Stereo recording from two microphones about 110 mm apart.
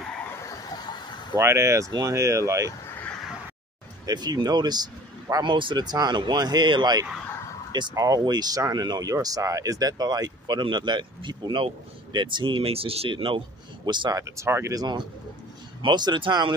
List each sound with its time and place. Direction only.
0.4 s a sound: 30° left (ahead or behind)
1.3 s speech: 25° right (ahead or behind)
4.0 s speech: 40° right (ahead or behind)
13.8 s speech: 45° right (ahead or behind)
14.1 s speech: 25° right (ahead or behind)
14.8 s speech: 40° right (ahead or behind)